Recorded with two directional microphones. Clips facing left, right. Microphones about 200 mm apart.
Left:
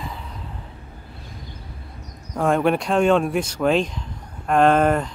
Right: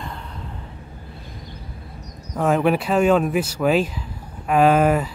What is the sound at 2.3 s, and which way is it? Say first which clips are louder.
Speech: even; 5° right (ahead or behind).